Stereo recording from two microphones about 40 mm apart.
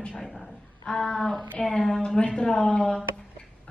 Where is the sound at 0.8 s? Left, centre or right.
Left.